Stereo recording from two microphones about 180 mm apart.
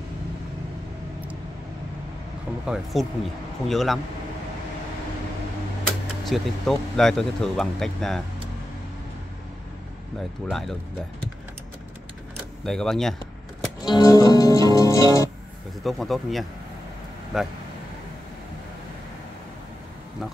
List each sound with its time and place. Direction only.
2.6 s speech: centre (ahead or behind)
5.9 s speech: centre (ahead or behind)
10.5 s speech: centre (ahead or behind)
12.6 s speech: 5° left (ahead or behind)
13.8 s music: 20° left (ahead or behind)
15.8 s speech: centre (ahead or behind)